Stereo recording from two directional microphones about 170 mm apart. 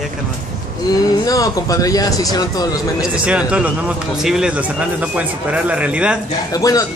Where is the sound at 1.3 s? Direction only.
20° left (ahead or behind).